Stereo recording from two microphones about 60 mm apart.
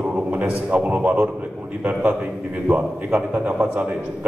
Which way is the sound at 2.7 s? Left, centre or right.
Right.